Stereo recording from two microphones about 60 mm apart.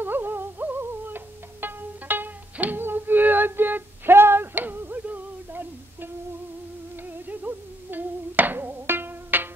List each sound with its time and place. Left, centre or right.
0.0 s music: right
7.1 s music: right